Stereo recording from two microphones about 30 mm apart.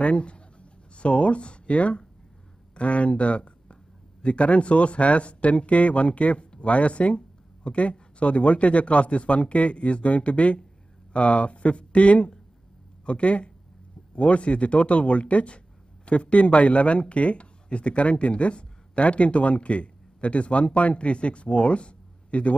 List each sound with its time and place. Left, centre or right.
0.0 s speech: left